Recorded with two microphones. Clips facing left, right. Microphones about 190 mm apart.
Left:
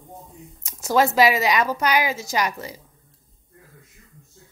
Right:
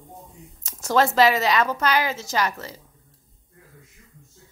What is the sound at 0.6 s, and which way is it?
A woman's voice, 10° left (ahead or behind).